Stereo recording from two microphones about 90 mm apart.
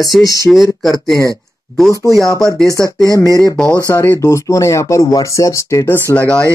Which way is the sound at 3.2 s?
40° right (ahead or behind).